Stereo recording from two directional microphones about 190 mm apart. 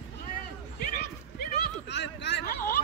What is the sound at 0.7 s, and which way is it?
Horse, 55° left (ahead or behind).